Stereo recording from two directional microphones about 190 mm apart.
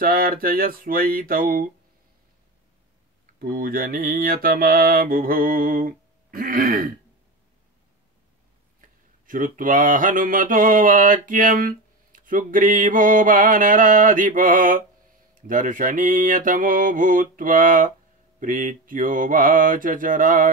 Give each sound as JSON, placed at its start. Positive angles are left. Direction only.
{"t": 0.0, "sound": "mantra", "side_deg": -50}
{"t": 3.3, "sound": "mantra", "side_deg": -50}
{"t": 8.8, "sound": "mantra", "side_deg": -45}